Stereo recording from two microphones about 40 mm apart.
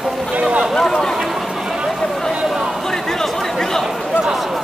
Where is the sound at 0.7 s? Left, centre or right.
Centre.